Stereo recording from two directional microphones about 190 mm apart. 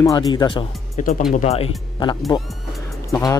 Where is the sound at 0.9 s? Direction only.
40° left (ahead or behind).